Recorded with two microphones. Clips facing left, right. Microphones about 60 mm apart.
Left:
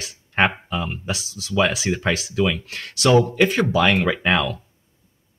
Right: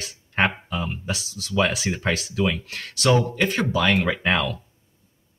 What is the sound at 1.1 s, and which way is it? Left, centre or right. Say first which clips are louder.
Speech: left 2 dB; centre.